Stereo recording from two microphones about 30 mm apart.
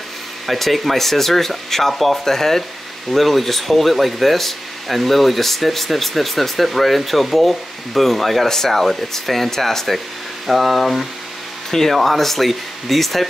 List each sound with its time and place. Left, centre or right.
0.5 s speech: centre